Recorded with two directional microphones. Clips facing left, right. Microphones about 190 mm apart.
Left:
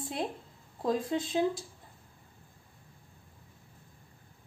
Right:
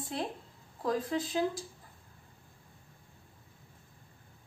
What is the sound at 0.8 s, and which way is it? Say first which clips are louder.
Speech: left 2 dB; 25° left (ahead or behind).